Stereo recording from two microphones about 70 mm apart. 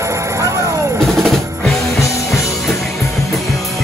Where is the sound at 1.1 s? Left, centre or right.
Centre.